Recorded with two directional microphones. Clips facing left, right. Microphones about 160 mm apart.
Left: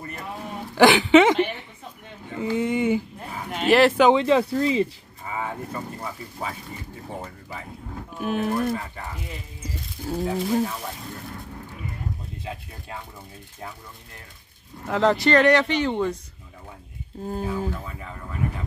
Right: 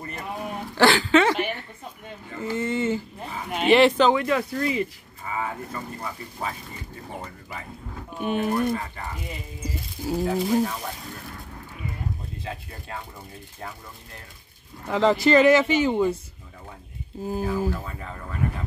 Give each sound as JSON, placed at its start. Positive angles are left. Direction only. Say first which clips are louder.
{"t": 0.7, "sound": "speech", "louder": "left 4 dB", "side_deg": 20}
{"t": 3.4, "sound": "speech", "louder": "even", "side_deg": -5}
{"t": 4.1, "sound": "speech", "louder": "left 4 dB", "side_deg": 25}
{"t": 8.2, "sound": "speech", "louder": "even", "side_deg": 0}
{"t": 10.0, "sound": "speech", "louder": "right 1 dB", "side_deg": -5}
{"t": 14.9, "sound": "speech", "louder": "right 1 dB", "side_deg": 0}
{"t": 17.2, "sound": "speech", "louder": "right 2 dB", "side_deg": -5}